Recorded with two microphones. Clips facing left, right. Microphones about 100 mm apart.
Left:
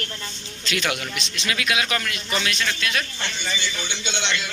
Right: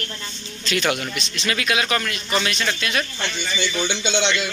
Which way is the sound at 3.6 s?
90° right.